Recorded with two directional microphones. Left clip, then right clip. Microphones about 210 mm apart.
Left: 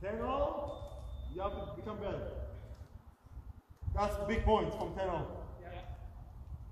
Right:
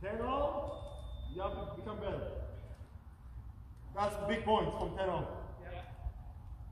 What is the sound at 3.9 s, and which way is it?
A man's voice, 10° right (ahead or behind).